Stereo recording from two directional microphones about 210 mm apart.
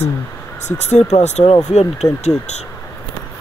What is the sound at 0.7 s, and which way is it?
Speech, 35° left (ahead or behind).